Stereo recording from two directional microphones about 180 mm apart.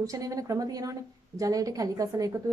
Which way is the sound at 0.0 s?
20° right (ahead or behind).